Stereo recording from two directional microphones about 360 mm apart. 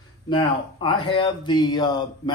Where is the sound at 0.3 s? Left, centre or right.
Centre.